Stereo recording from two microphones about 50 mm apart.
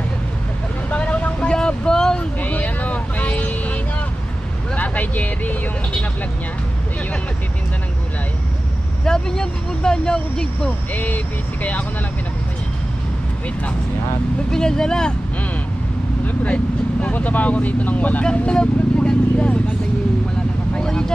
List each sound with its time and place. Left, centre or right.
0.8 s vehicle: left
2.4 s vehicle: left
4.7 s vehicle: left
9.0 s speech: centre
14.5 s speech: centre
16.4 s speech: left
18.2 s speech: centre
20.8 s vehicle: centre